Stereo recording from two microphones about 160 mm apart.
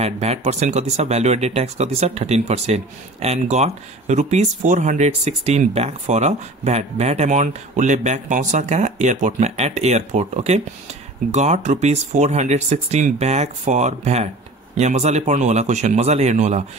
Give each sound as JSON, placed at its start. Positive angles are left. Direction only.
{"t": 0.0, "sound": "speech", "side_deg": -40}